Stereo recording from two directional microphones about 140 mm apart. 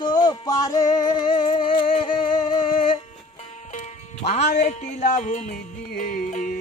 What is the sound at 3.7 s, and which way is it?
Music, 55° left (ahead or behind).